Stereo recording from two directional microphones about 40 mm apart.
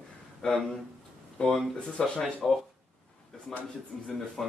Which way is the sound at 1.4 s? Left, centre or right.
Left.